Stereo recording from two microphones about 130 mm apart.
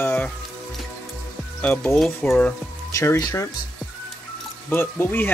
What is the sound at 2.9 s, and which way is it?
Speech, 25° left (ahead or behind).